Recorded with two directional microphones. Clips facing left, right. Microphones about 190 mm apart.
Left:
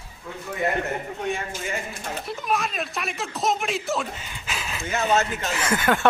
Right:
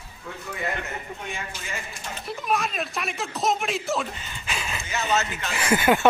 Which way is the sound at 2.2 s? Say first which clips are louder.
Right 1 dB; centre (ahead or behind).